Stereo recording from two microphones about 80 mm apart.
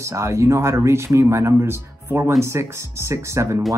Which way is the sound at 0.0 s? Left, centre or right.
Right.